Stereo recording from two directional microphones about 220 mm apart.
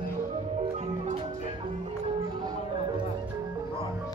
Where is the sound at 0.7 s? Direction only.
30° right (ahead or behind).